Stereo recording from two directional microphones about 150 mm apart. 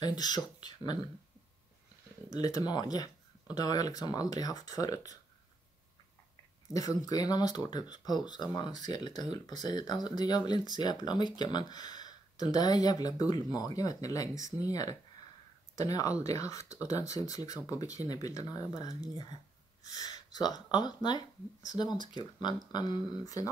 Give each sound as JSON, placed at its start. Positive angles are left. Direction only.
{"t": 0.0, "sound": "speech", "side_deg": 25}
{"t": 2.4, "sound": "speech", "side_deg": 25}
{"t": 6.7, "sound": "speech", "side_deg": 25}